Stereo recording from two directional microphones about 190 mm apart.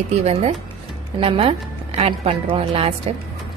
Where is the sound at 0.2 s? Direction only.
35° right (ahead or behind).